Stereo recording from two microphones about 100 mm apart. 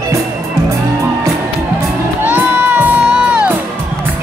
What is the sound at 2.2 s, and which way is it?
Music, 20° right (ahead or behind).